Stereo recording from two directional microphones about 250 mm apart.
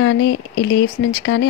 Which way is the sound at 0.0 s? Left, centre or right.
Left.